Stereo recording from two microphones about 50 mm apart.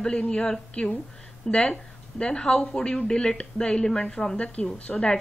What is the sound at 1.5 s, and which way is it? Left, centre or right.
A woman's voice, centre.